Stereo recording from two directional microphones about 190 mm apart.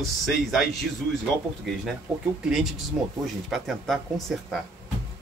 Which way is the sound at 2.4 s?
Centre (ahead or behind).